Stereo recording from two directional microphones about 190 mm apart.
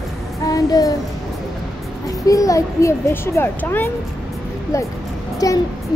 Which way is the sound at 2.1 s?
15° left (ahead or behind).